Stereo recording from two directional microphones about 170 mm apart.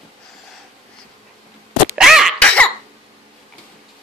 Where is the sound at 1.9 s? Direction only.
Centre (ahead or behind).